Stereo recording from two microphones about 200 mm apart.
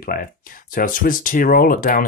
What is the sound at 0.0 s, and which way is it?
Speech, 45° left (ahead or behind).